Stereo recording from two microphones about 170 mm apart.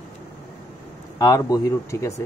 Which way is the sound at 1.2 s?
20° left (ahead or behind).